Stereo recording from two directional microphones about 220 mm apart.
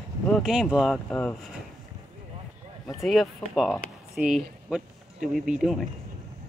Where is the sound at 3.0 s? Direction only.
Centre (ahead or behind).